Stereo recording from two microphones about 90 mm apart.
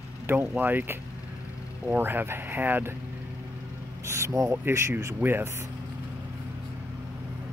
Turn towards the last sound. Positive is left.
turn(degrees=-25)  # may be behind; listen again after turning